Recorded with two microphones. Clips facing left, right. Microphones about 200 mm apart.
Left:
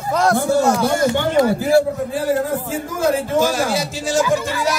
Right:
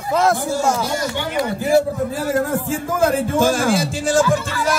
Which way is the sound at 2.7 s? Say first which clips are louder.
Right 1 dB; 50° right (ahead or behind).